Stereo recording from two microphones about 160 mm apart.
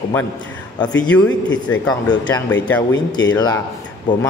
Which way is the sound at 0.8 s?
25° left (ahead or behind).